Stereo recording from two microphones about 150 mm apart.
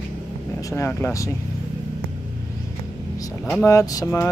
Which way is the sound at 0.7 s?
15° left (ahead or behind).